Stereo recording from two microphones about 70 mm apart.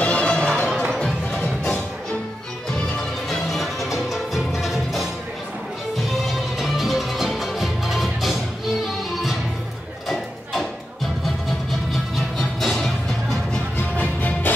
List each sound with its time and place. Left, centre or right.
0.0 s music: centre
3.3 s music: centre
6.6 s music: centre
10.0 s a sound: centre
11.9 s music: centre
13.9 s music: left